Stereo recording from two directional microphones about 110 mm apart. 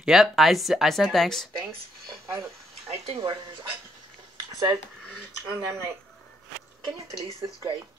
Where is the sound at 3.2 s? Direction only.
45° right (ahead or behind).